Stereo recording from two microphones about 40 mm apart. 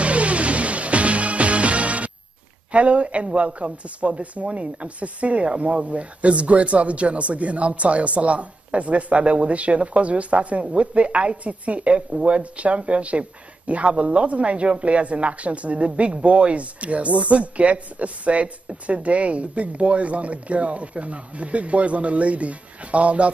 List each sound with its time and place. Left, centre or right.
0.0 s music: right
2.7 s speech: right